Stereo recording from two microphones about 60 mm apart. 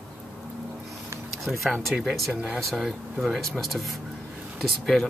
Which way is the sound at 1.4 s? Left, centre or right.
Centre.